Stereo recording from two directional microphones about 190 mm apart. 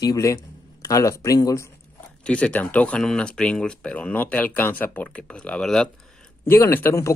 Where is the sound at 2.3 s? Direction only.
5° left (ahead or behind).